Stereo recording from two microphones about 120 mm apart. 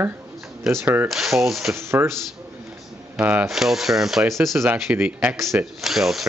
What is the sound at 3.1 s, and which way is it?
Speech, 15° right (ahead or behind).